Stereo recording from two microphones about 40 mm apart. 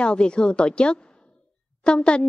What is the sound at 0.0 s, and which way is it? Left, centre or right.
A woman's voice, left.